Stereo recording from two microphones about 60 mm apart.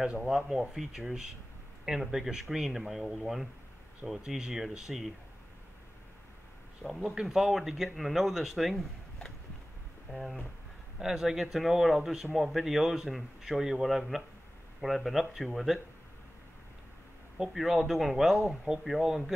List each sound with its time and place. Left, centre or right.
0.0 s speech: centre
6.8 s speech: centre
11.0 s speech: centre
17.5 s speech: centre